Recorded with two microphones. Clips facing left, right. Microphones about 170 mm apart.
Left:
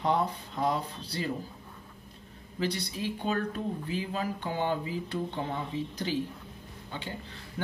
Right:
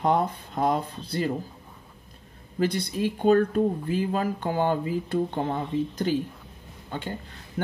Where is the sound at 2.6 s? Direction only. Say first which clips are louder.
Right 7 dB; 50° right (ahead or behind).